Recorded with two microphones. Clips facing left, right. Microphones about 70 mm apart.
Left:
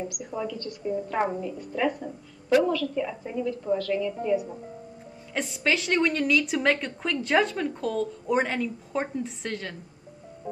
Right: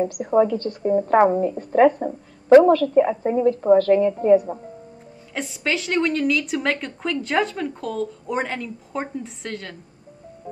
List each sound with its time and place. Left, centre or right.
0.0 s speech: right
5.3 s a woman's voice: centre